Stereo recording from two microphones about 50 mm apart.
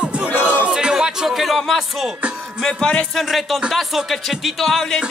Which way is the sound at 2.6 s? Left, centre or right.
Centre.